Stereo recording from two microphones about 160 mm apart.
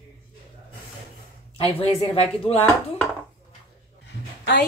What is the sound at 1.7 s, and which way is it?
Speech, 40° left (ahead or behind).